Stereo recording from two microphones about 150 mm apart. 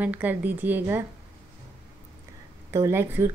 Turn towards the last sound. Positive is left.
turn(degrees=-15)  # may be behind; listen again after turning